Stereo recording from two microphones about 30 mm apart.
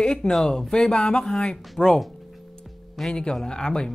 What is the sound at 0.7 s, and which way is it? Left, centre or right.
Speech, left.